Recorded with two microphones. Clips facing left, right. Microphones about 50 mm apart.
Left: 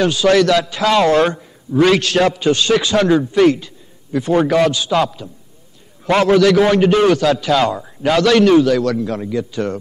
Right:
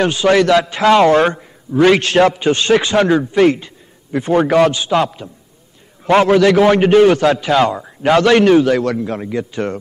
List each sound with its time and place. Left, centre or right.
0.0 s a man's voice: right
4.3 s a man's voice: centre